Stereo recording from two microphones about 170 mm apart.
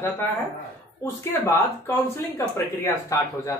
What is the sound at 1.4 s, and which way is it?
Speech, 15° left (ahead or behind).